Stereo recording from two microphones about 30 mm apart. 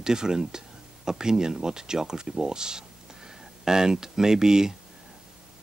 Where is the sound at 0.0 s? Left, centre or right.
Right.